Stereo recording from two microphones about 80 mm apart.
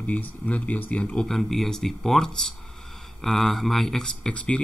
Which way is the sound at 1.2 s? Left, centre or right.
Centre.